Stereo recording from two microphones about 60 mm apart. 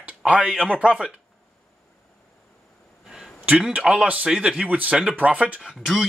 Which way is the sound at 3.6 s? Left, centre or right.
Centre.